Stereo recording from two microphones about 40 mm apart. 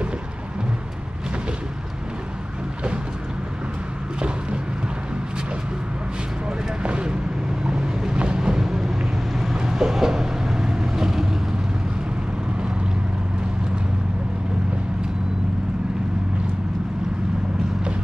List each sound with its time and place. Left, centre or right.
6.8 s vehicle: right; by 11.2 s centre